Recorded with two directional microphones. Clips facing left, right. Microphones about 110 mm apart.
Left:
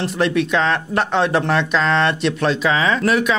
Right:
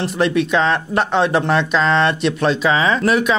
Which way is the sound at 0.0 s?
20° right (ahead or behind).